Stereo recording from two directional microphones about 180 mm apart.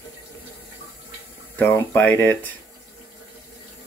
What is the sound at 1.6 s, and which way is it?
Speech, 10° left (ahead or behind).